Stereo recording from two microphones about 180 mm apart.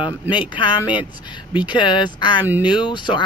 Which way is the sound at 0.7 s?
10° right (ahead or behind).